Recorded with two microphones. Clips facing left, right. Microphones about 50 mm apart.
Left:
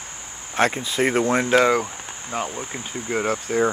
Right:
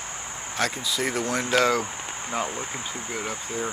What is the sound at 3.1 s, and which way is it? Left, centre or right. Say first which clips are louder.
Speech: left 11 dB; left.